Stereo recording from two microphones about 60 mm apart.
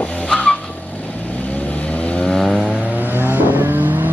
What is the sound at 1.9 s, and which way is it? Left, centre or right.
Vehicle, left.